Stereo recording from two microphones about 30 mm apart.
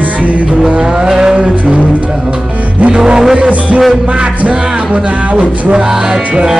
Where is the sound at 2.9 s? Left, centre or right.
Right.